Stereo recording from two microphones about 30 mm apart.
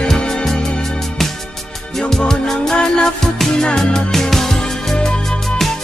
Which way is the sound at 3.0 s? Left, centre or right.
Centre.